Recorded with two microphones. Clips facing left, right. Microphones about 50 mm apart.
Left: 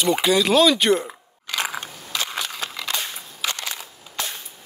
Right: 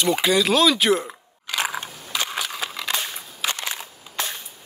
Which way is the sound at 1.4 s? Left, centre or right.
Centre.